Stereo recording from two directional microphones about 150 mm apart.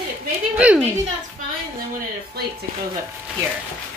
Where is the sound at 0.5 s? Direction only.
10° right (ahead or behind).